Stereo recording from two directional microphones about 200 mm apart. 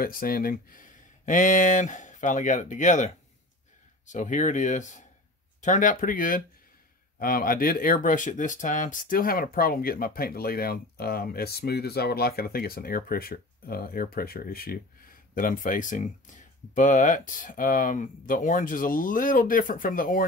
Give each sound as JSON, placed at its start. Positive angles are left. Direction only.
{"t": 0.0, "sound": "speech", "side_deg": 45}